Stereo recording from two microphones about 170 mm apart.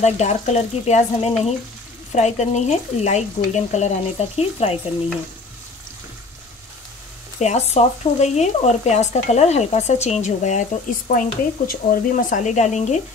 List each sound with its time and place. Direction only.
0.0 s speech: 40° left (ahead or behind)
7.3 s speech: 40° left (ahead or behind)